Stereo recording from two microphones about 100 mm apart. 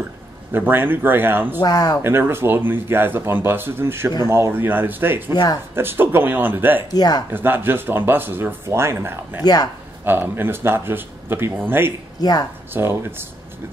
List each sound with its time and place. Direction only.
0.5 s speech: 20° right (ahead or behind)
1.6 s speech: 40° left (ahead or behind)
2.0 s speech: 25° right (ahead or behind)
5.3 s speech: 45° left (ahead or behind)
5.8 s speech: 20° right (ahead or behind)
6.9 s speech: 40° left (ahead or behind)
7.2 s speech: 20° right (ahead or behind)
9.4 s speech: 40° left (ahead or behind)
10.0 s speech: 20° right (ahead or behind)
12.2 s speech: 40° left (ahead or behind)
12.7 s speech: 20° right (ahead or behind)